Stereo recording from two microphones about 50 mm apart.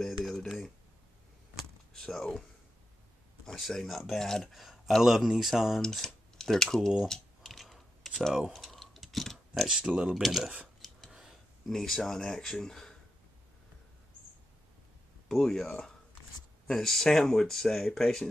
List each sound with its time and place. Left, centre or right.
0.0 s a sound: centre
2.0 s speech: centre
3.4 s speech: centre
4.5 s speech: centre
5.8 s speech: centre
7.1 s computer keyboard: centre
8.3 s speech: centre
8.5 s clock: centre
9.7 s speech: centre
10.1 s speech: centre
11.1 s a sound: centre
11.7 s speech: centre
15.2 s speech: centre